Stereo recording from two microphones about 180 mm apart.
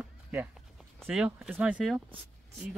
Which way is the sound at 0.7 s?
Centre (ahead or behind).